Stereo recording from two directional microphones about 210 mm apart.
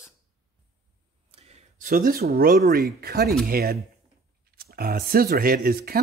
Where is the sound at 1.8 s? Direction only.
40° right (ahead or behind).